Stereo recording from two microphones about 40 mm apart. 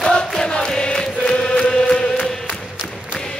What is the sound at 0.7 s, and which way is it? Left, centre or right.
Chant, left.